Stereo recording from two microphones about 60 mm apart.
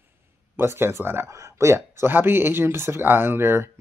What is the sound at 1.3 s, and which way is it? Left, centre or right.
Speech, right.